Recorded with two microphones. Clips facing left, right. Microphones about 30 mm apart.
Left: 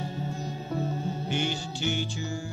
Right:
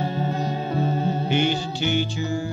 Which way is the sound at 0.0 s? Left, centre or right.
Right.